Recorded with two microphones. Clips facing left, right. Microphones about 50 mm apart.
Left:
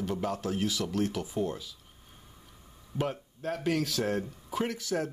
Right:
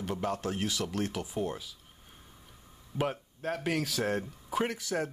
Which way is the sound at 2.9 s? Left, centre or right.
Centre.